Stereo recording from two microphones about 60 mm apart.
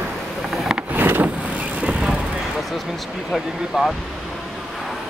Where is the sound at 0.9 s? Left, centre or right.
Right.